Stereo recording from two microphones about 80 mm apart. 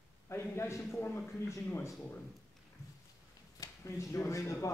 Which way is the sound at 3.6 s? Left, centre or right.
Left.